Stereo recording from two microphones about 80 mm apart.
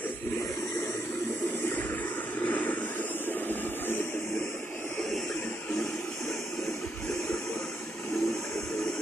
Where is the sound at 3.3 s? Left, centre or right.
Left.